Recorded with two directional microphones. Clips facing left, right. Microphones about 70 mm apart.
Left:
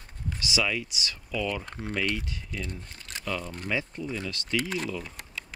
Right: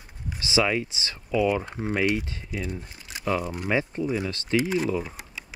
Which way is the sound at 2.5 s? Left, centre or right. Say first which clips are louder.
Right 6 dB; centre.